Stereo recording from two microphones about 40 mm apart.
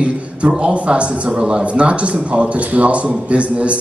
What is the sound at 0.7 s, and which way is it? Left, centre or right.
A man's voice, right.